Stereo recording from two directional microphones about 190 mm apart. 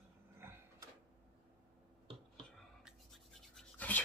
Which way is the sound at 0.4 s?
15° right (ahead or behind).